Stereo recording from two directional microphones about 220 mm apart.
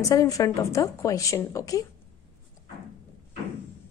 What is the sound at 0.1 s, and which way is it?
A woman's voice, 15° left (ahead or behind).